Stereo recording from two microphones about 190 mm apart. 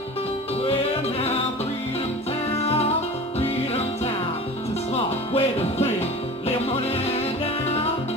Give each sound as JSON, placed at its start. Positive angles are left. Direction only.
{"t": 3.3, "sound": "music", "side_deg": 35}